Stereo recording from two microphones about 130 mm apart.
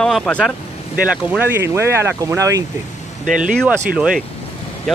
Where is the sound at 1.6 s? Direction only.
20° right (ahead or behind).